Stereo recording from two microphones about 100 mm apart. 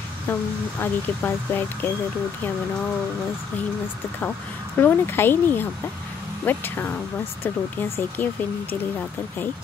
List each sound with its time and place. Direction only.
0.3 s speech: 20° left (ahead or behind)
4.7 s speech: 20° left (ahead or behind)